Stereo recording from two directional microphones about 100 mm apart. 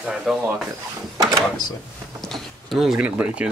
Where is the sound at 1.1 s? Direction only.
35° right (ahead or behind).